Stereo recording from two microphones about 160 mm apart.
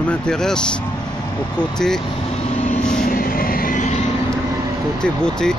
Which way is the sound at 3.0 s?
60° left (ahead or behind).